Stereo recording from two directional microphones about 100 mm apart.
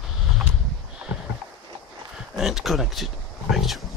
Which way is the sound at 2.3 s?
5° right (ahead or behind).